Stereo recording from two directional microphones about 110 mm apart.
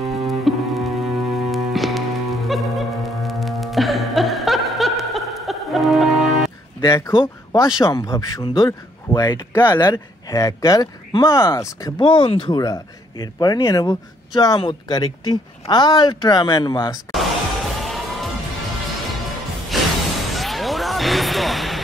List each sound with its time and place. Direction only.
0.1 s music: centre (ahead or behind)
6.8 s speech: 25° left (ahead or behind)
12.0 s speech: 50° left (ahead or behind)
13.2 s speech: 35° left (ahead or behind)
17.1 s music: centre (ahead or behind)
19.7 s a sound: centre (ahead or behind)
20.3 s music: centre (ahead or behind)